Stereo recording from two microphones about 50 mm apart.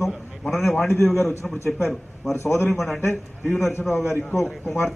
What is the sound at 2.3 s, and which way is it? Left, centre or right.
Speech, left.